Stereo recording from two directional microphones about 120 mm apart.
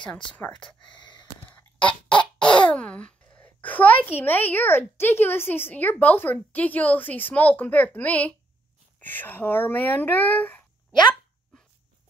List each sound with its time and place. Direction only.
1.5 s chicken: 10° left (ahead or behind)
2.0 s a child's voice: 10° left (ahead or behind)